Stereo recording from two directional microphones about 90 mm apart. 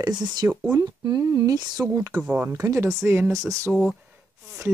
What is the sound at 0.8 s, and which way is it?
Speech, 45° right (ahead or behind).